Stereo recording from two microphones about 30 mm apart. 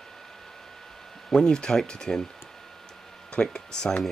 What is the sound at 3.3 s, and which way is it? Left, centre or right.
Speech, left.